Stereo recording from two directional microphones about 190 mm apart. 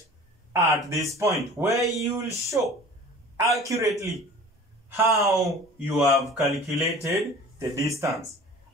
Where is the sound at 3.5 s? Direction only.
15° right (ahead or behind).